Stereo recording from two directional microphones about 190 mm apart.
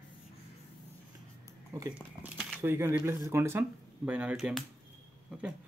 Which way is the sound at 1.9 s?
10° right (ahead or behind).